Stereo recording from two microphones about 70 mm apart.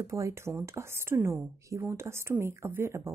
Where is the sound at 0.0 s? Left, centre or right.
Right.